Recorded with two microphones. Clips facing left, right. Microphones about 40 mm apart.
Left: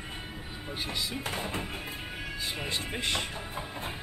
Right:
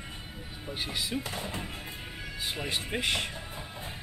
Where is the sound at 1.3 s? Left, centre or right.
Left.